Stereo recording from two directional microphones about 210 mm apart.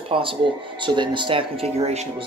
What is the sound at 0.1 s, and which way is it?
Speech, 25° right (ahead or behind).